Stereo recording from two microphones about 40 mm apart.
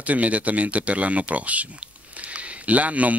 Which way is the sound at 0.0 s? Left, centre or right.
Right.